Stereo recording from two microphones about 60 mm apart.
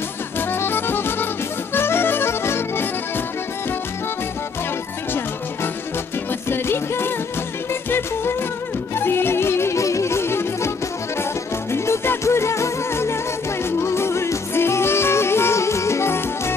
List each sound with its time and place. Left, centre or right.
0.4 s music: left
6.5 s music: left
11.7 s music: left